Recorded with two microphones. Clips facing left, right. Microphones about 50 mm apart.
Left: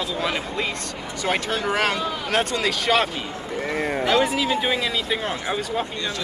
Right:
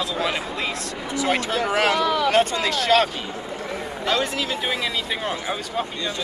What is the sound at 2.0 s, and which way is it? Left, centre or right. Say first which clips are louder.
Speech: right 6 dB; right.